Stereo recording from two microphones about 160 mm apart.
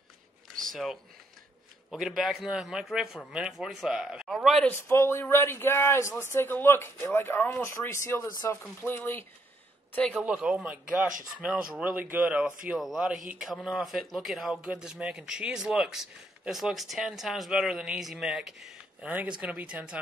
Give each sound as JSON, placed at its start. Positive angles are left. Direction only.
{"t": 0.6, "sound": "a sound", "side_deg": 0}
{"t": 1.9, "sound": "speech", "side_deg": -5}
{"t": 4.6, "sound": "speech", "side_deg": 15}
{"t": 10.2, "sound": "a man's voice", "side_deg": -5}